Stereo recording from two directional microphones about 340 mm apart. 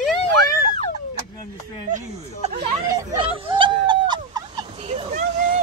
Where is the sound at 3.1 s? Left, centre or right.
Centre.